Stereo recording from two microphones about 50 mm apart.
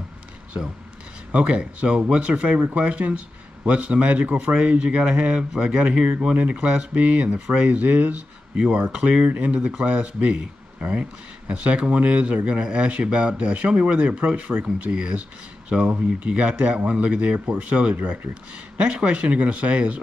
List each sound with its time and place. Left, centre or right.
1.3 s speech: right
8.5 s speech: right